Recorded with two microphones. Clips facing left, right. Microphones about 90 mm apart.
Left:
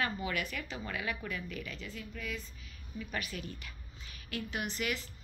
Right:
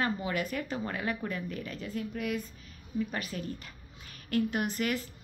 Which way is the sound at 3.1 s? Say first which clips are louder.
Right 4 dB; 35° right (ahead or behind).